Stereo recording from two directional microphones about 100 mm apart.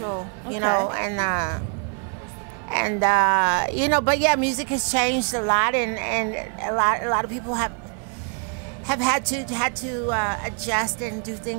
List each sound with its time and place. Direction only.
0.0 s a woman's voice: 25° right (ahead or behind)
2.7 s a woman's voice: 20° right (ahead or behind)
8.8 s a woman's voice: 25° right (ahead or behind)